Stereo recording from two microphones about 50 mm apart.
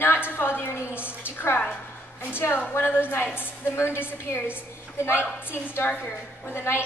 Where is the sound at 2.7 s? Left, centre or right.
Left.